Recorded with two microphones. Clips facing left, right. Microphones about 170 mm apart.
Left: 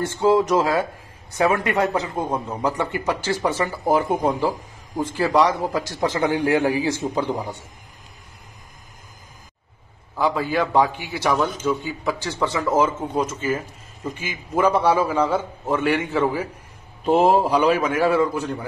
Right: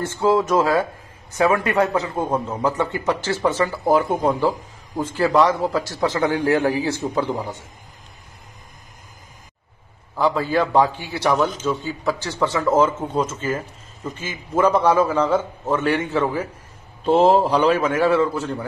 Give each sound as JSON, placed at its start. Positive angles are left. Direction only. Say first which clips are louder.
{"t": 0.2, "sound": "a man's voice", "louder": "even", "side_deg": 15}
{"t": 10.1, "sound": "a man's voice", "louder": "right 2 dB", "side_deg": 15}
{"t": 10.6, "sound": "a man's voice", "louder": "right 1 dB", "side_deg": -15}
{"t": 11.6, "sound": "a man's voice", "louder": "right 1 dB", "side_deg": 15}